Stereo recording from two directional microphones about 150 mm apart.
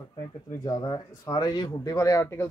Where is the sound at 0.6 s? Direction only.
25° left (ahead or behind).